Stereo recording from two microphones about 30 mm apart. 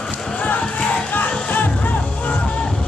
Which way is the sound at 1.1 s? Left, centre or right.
Left.